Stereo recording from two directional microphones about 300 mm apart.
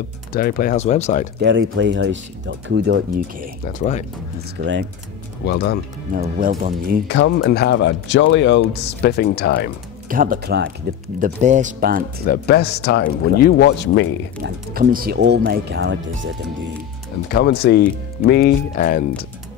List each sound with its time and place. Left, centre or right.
0.3 s speech: left
1.4 s speech: right
3.6 s speech: left
4.6 s speech: right
5.4 s speech: left
6.1 s speech: right
7.1 s speech: left
10.0 s speech: right
12.3 s speech: left
14.4 s speech: right
17.3 s speech: left